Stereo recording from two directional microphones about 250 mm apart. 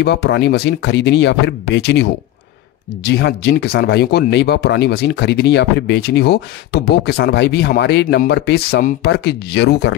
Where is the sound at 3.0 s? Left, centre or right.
Left.